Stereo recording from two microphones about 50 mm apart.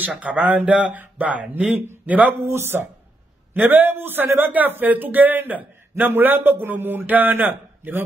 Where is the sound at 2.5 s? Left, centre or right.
Right.